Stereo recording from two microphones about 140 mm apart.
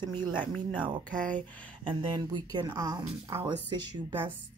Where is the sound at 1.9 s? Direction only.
35° right (ahead or behind).